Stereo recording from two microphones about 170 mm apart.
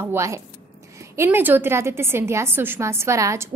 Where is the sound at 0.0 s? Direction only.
15° right (ahead or behind).